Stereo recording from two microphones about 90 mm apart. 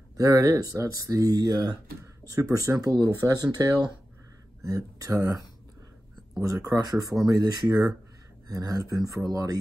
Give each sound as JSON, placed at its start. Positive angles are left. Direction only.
{"t": 0.2, "sound": "speech", "side_deg": -40}
{"t": 6.4, "sound": "speech", "side_deg": -40}